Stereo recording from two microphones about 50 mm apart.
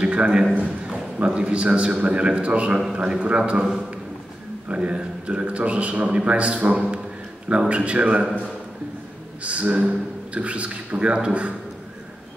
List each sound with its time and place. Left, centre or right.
0.0 s a man's voice: right
4.6 s a man's voice: right
9.4 s a man's voice: right